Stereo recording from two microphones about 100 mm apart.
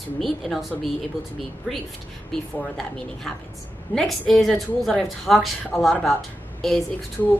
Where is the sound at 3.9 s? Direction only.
Centre (ahead or behind).